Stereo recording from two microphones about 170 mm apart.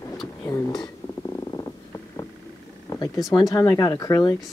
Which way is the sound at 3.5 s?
20° left (ahead or behind).